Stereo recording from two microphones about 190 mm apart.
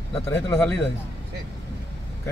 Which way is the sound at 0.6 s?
5° left (ahead or behind).